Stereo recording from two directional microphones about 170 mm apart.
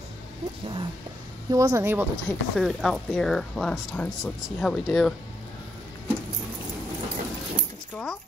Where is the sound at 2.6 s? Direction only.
Centre (ahead or behind).